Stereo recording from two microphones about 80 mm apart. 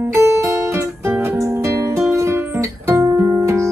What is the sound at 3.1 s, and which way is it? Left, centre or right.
Music, right.